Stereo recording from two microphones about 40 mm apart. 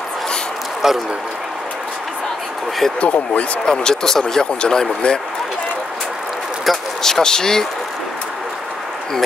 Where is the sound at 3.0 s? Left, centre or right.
Left.